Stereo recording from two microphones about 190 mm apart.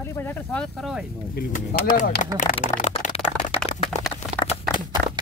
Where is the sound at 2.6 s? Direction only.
40° left (ahead or behind).